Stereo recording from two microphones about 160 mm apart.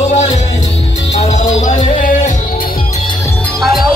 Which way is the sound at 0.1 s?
45° left (ahead or behind).